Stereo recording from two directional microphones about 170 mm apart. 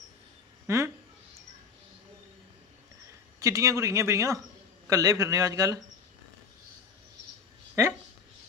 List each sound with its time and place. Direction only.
0.7 s speech: 15° right (ahead or behind)
3.3 s a man's voice: 20° right (ahead or behind)